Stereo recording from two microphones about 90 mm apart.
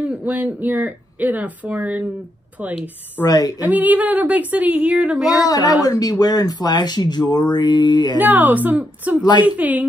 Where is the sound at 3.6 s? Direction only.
20° right (ahead or behind).